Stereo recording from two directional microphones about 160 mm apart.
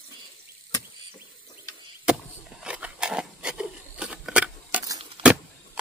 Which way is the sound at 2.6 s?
5° right (ahead or behind).